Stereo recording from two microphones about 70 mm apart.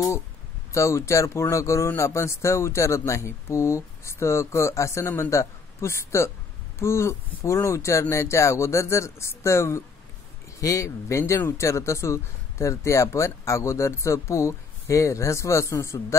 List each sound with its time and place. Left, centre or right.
0.7 s speech: left